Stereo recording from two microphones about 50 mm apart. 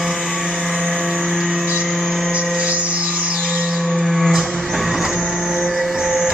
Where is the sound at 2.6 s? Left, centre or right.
Right.